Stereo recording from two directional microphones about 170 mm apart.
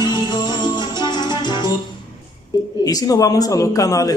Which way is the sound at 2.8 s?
20° left (ahead or behind).